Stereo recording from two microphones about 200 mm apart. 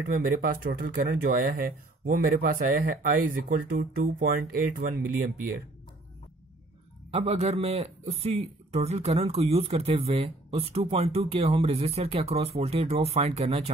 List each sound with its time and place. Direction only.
0.0 s speech: 45° right (ahead or behind)
7.1 s speech: 30° right (ahead or behind)